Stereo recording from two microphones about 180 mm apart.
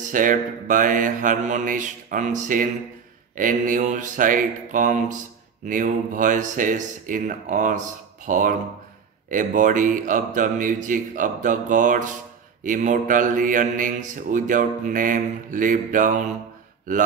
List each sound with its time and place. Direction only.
0.1 s mantra: 50° right (ahead or behind)